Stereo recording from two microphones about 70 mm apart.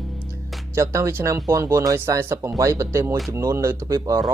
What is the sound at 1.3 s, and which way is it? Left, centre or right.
Speech, right.